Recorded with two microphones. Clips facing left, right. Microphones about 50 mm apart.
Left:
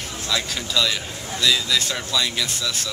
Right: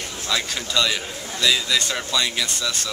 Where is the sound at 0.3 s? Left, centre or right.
Centre.